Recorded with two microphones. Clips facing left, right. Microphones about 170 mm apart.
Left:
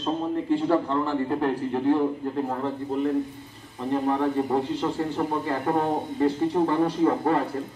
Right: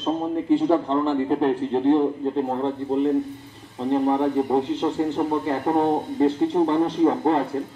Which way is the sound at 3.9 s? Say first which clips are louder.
Right 4 dB; 20° right (ahead or behind).